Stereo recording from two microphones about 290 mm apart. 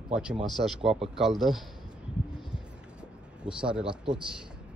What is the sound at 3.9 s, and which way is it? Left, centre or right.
Speech, centre.